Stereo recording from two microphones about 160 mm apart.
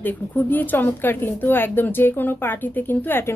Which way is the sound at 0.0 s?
10° left (ahead or behind).